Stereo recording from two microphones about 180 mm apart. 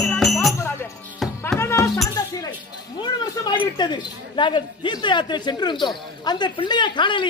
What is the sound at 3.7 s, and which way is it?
Speech, 25° left (ahead or behind).